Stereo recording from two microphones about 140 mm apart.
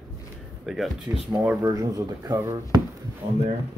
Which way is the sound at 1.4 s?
10° right (ahead or behind).